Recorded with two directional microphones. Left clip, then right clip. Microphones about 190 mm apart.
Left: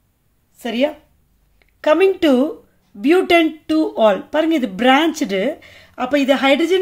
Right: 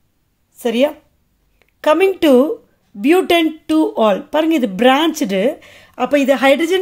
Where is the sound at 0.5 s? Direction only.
35° right (ahead or behind).